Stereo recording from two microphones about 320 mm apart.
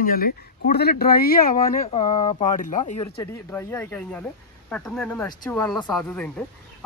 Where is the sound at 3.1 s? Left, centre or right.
Centre.